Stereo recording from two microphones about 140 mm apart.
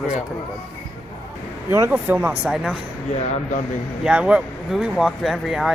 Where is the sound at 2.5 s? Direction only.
5° right (ahead or behind).